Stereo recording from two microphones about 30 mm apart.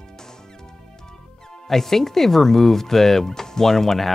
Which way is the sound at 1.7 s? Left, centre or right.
Centre.